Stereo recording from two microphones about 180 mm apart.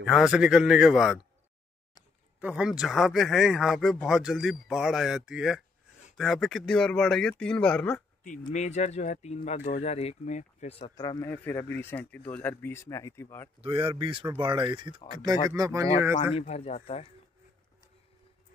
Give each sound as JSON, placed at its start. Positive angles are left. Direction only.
{"t": 0.0, "sound": "speech", "side_deg": 0}
{"t": 2.4, "sound": "speech", "side_deg": -5}
{"t": 8.2, "sound": "speech", "side_deg": 45}
{"t": 11.0, "sound": "a man's voice", "side_deg": 20}
{"t": 11.2, "sound": "speech", "side_deg": 10}
{"t": 13.6, "sound": "speech", "side_deg": -30}
{"t": 16.3, "sound": "speech", "side_deg": 35}